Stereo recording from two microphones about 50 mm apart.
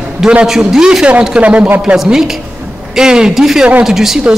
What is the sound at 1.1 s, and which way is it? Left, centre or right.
Speech, right.